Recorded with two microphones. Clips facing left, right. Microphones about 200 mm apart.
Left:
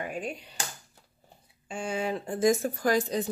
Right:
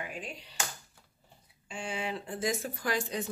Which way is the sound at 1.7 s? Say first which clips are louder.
Left 5 dB; 45° left (ahead or behind).